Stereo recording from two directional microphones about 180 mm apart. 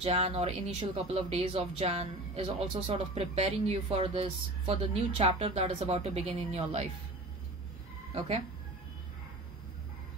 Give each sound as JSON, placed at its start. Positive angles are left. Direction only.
{"t": 0.0, "sound": "speech", "side_deg": -35}